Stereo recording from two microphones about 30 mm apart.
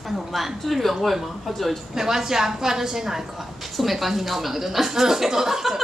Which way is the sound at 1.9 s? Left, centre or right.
Centre.